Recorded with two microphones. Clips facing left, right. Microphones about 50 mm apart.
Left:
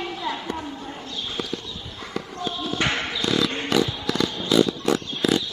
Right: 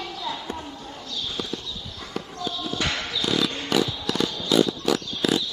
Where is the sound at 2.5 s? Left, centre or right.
Left.